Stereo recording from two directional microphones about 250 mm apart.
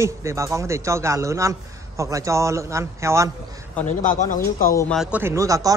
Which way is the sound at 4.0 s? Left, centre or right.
Left.